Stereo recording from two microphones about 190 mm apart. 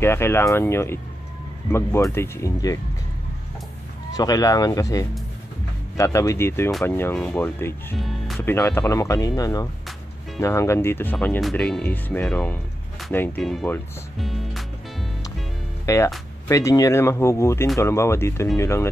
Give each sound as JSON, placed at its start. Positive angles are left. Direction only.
{"t": 0.0, "sound": "speech", "side_deg": 10}
{"t": 4.1, "sound": "speech", "side_deg": 20}
{"t": 8.0, "sound": "music", "side_deg": 0}
{"t": 8.4, "sound": "speech", "side_deg": 15}
{"t": 14.2, "sound": "music", "side_deg": 0}
{"t": 15.8, "sound": "speech", "side_deg": 15}